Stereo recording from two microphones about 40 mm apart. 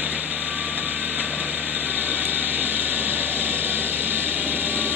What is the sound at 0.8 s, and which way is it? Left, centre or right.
Vehicle, right.